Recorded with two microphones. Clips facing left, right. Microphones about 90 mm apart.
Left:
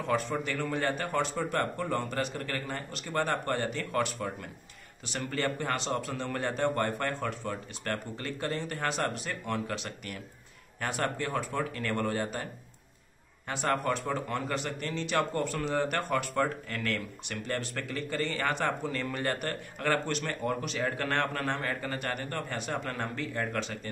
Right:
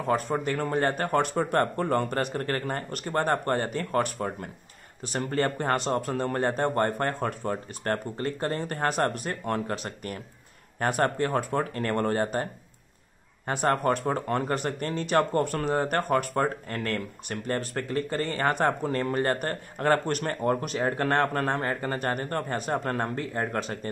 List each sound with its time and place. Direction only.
0.0 s a man's voice: 40° right (ahead or behind)
13.5 s a man's voice: 45° right (ahead or behind)